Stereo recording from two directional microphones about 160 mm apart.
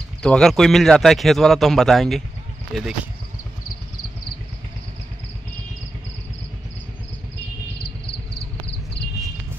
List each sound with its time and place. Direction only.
0.2 s speech: 5° left (ahead or behind)